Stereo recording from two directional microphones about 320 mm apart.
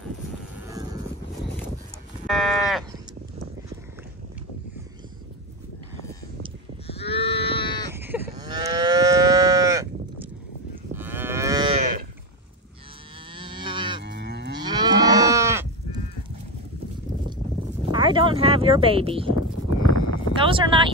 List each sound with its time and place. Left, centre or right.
0.8 s a sound: centre
2.2 s sheep: centre
6.9 s cattle: centre
7.3 s sheep: centre
7.9 s moo: centre
11.0 s livestock: centre
13.3 s cattle: centre
14.0 s moo: right
14.6 s moo: centre
17.9 s a sound: centre
19.9 s a sound: left
20.3 s speech: centre